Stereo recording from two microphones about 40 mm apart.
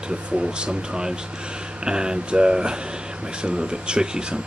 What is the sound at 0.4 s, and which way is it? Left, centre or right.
Speech, right.